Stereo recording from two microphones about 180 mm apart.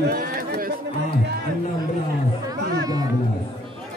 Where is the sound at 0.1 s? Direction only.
50° right (ahead or behind).